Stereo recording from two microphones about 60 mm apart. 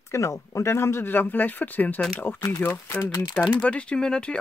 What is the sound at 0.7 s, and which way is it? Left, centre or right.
Speech, left.